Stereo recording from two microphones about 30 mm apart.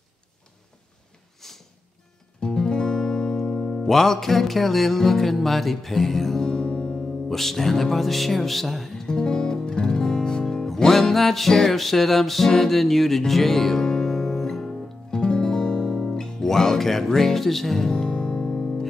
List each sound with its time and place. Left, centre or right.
1.4 s music: centre
2.4 s speech: left
6.4 s music: left
7.2 s music: centre
9.0 s music: left
15.0 s guitar: left; by 17.9 s centre
17.9 s music: left
18.4 s music: centre